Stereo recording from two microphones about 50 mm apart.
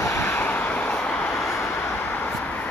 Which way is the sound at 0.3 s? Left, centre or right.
Left.